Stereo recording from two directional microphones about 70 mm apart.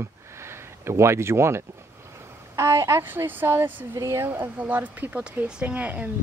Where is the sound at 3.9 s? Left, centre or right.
Right.